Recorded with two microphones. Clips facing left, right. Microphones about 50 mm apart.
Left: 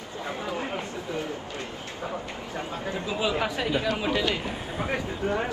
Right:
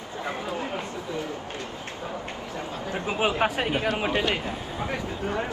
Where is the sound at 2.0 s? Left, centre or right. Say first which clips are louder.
Left 1 dB; left.